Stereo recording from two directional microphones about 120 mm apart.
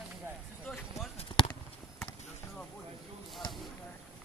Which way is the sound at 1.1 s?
45° left (ahead or behind).